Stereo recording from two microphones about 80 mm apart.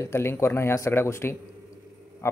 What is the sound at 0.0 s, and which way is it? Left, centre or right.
Speech, left.